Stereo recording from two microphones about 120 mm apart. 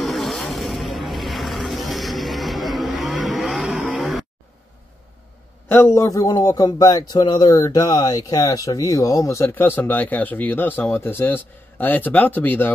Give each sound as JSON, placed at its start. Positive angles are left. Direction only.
{"t": 0.0, "sound": "vehicle", "side_deg": 0}
{"t": 3.8, "sound": "grunt", "side_deg": 0}
{"t": 5.7, "sound": "a man's voice", "side_deg": 20}